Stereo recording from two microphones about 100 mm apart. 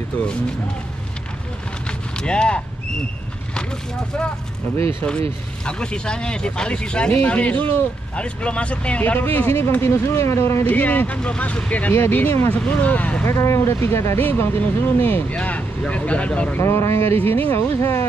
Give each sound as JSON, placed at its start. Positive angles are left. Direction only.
{"t": 1.9, "sound": "vehicle", "side_deg": 10}
{"t": 5.7, "sound": "speech", "side_deg": 10}
{"t": 13.3, "sound": "speech", "side_deg": 30}
{"t": 16.5, "sound": "speech", "side_deg": 25}
{"t": 17.0, "sound": "speech", "side_deg": -85}
{"t": 17.3, "sound": "speech", "side_deg": 20}
{"t": 17.7, "sound": "speech", "side_deg": 30}